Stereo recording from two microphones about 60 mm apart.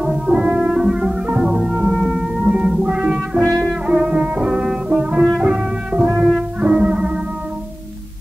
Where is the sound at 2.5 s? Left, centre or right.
Right.